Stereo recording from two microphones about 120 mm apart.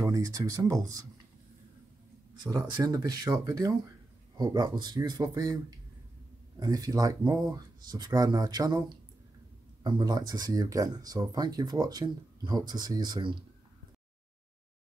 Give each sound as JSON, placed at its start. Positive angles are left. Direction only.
{"t": 0.0, "sound": "speech", "side_deg": -30}
{"t": 2.4, "sound": "speech", "side_deg": -35}
{"t": 6.6, "sound": "speech", "side_deg": -30}